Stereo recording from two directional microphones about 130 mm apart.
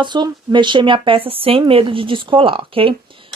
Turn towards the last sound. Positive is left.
turn(degrees=-45)  # may be behind; listen again after turning